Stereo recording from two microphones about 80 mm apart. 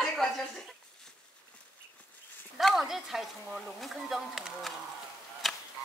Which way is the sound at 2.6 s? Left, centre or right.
Centre.